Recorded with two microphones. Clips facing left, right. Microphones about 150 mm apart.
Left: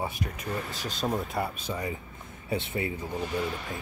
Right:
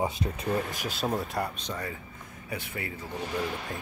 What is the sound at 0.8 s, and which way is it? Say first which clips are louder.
Speech: even; 5° right (ahead or behind).